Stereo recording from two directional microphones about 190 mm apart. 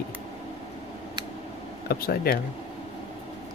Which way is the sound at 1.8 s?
50° left (ahead or behind).